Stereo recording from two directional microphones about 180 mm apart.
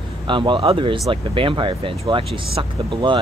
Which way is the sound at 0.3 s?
25° right (ahead or behind).